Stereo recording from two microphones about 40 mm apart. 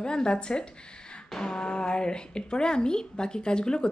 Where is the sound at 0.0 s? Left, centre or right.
Left.